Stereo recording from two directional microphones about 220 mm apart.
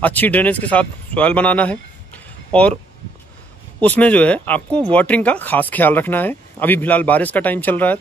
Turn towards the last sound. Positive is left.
turn(degrees=10)  # may be behind; listen again after turning